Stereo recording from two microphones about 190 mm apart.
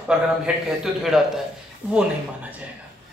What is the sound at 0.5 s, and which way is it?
Speech, 5° right (ahead or behind).